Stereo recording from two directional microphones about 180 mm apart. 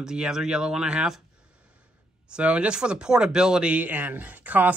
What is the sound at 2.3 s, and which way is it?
Speech, 5° right (ahead or behind).